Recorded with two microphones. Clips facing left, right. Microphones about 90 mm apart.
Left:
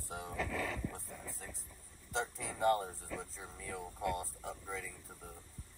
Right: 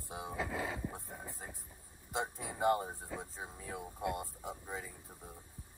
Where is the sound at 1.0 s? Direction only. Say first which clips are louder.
Right 1 dB; 55° right (ahead or behind).